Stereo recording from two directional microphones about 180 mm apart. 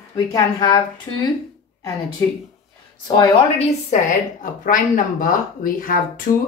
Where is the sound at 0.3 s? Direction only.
20° left (ahead or behind).